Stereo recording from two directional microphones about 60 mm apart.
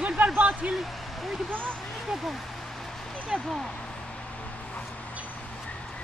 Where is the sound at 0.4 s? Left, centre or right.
Right.